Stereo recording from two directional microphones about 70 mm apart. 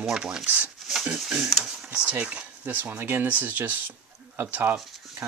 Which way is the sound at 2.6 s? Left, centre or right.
Right.